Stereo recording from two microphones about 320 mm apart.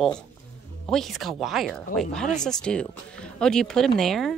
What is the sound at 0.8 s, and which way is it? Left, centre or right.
Speech, centre.